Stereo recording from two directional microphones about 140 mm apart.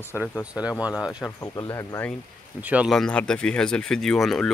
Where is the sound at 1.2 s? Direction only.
20° left (ahead or behind).